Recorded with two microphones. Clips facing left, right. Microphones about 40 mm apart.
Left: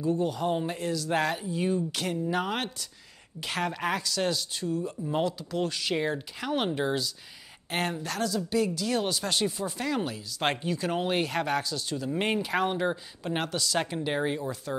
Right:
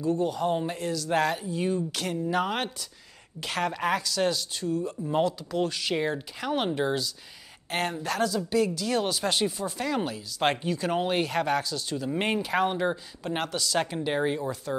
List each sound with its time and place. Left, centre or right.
0.0 s speech: centre
9.6 s speech: centre